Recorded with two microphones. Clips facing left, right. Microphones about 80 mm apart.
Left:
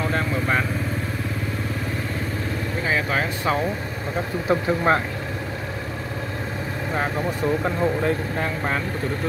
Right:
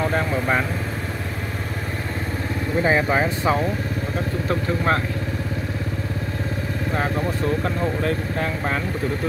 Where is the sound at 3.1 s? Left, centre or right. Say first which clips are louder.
Right 3 dB; centre.